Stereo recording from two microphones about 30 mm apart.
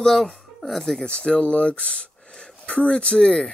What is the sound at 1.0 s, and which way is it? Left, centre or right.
Speech, left.